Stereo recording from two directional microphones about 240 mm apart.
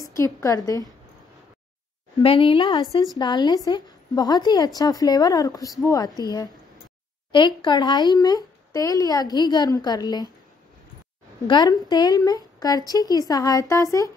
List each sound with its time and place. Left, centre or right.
0.2 s speech: centre
2.1 s speech: left
11.4 s speech: centre